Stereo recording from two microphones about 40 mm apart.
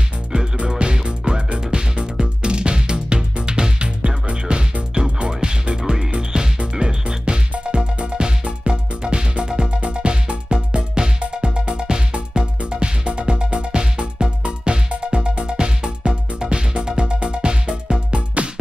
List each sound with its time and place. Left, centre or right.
0.7 s music: right
5.8 s music: centre
6.1 s music: right